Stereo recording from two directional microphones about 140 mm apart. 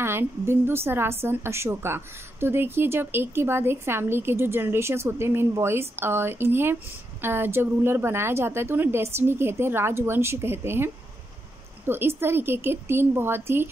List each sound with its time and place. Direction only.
0.0 s a woman's voice: 15° right (ahead or behind)